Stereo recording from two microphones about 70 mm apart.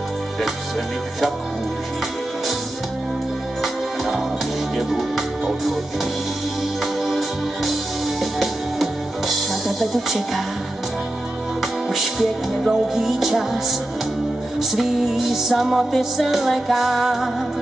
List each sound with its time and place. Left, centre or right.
3.6 s music: centre
7.1 s organ: centre
8.2 s music: centre
9.7 s speech: centre
11.6 s music: centre